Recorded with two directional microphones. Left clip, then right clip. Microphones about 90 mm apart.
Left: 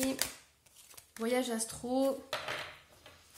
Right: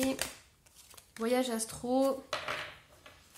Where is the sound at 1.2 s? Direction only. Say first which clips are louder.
Right 2 dB; 35° right (ahead or behind).